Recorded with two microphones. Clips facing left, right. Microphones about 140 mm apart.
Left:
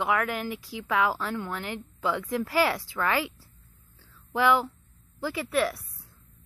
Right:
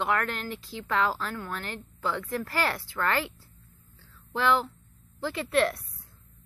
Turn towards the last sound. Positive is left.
turn(degrees=5)  # may be behind; listen again after turning